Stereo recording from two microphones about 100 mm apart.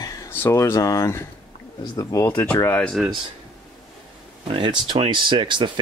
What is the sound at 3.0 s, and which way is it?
Speech, 5° right (ahead or behind).